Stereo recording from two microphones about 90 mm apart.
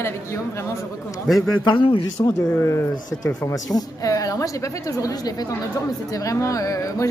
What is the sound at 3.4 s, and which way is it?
Speech, 40° left (ahead or behind).